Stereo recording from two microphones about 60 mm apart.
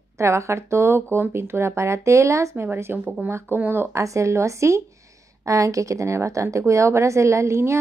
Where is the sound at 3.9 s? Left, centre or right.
Right.